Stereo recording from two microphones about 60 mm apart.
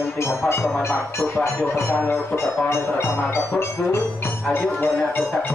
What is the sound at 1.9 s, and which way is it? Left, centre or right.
Speech, left.